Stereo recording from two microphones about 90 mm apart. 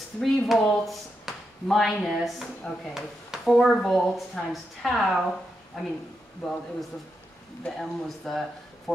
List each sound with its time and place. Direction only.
0.2 s speech: centre (ahead or behind)
7.6 s speech: 5° left (ahead or behind)